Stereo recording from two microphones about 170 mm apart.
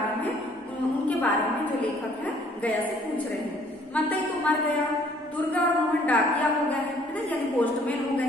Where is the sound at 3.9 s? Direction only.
10° left (ahead or behind).